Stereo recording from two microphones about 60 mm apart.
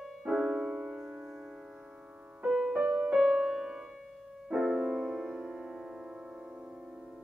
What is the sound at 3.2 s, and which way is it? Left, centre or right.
Music, centre.